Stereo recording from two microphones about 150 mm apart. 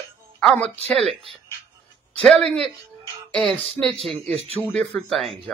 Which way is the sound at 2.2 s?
5° left (ahead or behind).